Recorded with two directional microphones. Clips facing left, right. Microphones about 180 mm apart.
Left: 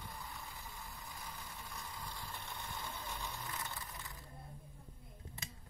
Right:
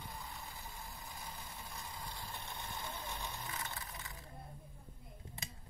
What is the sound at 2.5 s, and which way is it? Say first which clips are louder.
Mechanisms: right 1 dB; 20° right (ahead or behind).